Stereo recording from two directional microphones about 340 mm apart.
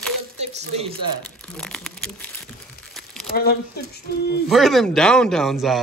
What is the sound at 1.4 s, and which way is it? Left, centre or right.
Crumpling, centre.